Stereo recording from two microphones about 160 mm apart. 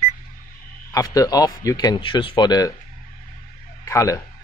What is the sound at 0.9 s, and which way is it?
Speech, 20° left (ahead or behind).